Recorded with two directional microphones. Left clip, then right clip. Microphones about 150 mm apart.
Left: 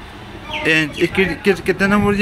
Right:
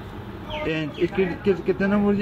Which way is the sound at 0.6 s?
15° left (ahead or behind).